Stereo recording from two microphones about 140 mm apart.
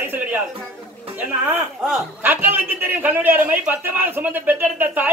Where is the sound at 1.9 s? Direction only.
10° right (ahead or behind).